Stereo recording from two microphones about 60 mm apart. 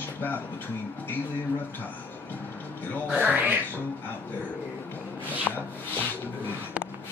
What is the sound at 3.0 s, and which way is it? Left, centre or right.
Speech, right.